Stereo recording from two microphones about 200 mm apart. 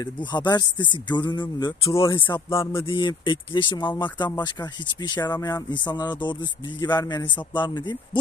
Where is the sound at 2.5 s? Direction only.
15° left (ahead or behind).